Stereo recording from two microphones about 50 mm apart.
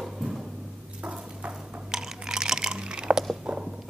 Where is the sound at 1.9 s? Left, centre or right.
Centre.